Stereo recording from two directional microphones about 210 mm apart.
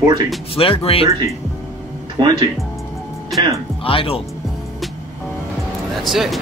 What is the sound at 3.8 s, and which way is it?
Speech, 25° left (ahead or behind).